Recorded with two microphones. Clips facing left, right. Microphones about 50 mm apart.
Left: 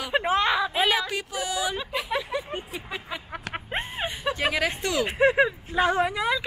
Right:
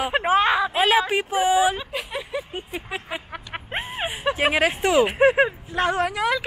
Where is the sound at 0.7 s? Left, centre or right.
Centre.